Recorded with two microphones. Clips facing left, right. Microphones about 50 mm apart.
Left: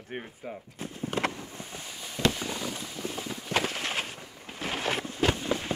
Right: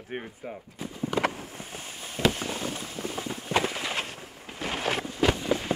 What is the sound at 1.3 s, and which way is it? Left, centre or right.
Boat, right.